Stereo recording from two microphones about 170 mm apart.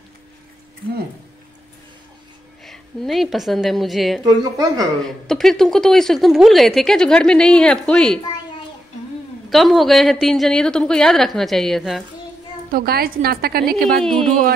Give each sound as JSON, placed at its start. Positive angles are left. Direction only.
{"t": 2.6, "sound": "a woman's voice", "side_deg": 0}
{"t": 4.2, "sound": "speech", "side_deg": -20}
{"t": 5.0, "sound": "speech", "side_deg": 0}
{"t": 9.5, "sound": "speech", "side_deg": 0}
{"t": 12.7, "sound": "a woman's voice", "side_deg": -60}